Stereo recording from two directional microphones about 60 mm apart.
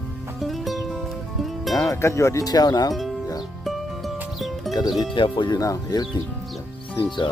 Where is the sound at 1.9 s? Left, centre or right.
Left.